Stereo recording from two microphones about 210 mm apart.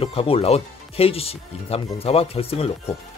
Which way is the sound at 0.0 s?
25° left (ahead or behind).